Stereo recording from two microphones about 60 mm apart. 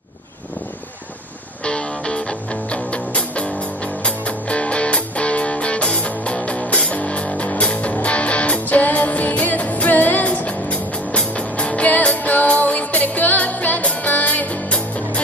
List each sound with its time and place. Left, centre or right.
1.6 s music: centre